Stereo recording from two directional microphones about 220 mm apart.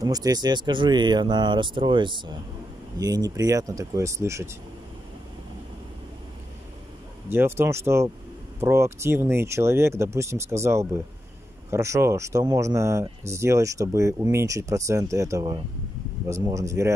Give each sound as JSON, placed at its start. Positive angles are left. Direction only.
{"t": 0.0, "sound": "speech", "side_deg": -15}
{"t": 7.2, "sound": "speech", "side_deg": -10}